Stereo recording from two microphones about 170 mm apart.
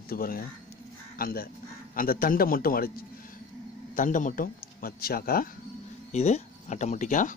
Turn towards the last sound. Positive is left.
turn(degrees=50)  # may be behind; listen again after turning